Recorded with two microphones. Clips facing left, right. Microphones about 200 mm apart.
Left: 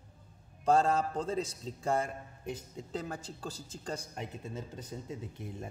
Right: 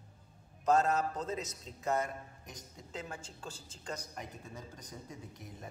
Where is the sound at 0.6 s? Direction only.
30° left (ahead or behind).